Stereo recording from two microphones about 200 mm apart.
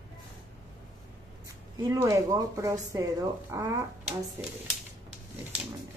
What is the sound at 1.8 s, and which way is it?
Speech, 15° right (ahead or behind).